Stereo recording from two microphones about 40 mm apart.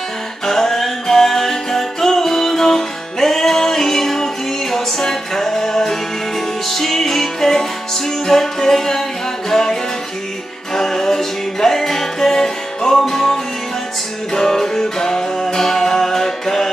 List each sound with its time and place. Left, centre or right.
0.5 s music: centre